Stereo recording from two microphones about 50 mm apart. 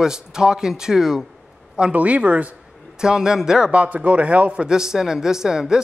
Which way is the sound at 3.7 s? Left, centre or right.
Right.